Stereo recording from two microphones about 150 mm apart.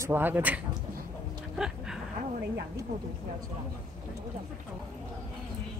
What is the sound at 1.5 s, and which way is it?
Dog, 5° right (ahead or behind).